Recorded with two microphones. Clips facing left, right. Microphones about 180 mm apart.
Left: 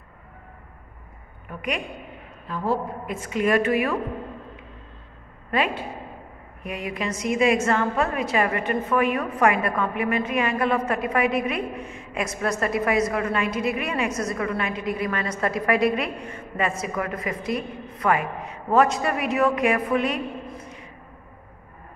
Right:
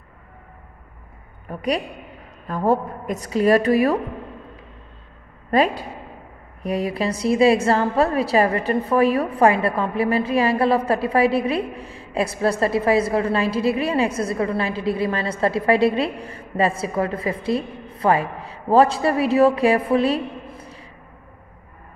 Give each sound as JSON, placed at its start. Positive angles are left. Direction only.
{"t": 1.5, "sound": "a woman's voice", "side_deg": -35}
{"t": 2.4, "sound": "a woman's voice", "side_deg": -50}
{"t": 5.5, "sound": "a woman's voice", "side_deg": -40}